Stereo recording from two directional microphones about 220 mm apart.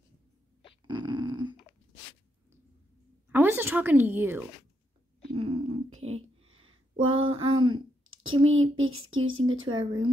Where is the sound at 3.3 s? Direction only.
10° right (ahead or behind).